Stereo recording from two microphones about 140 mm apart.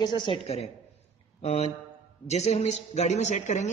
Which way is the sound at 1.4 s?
50° left (ahead or behind).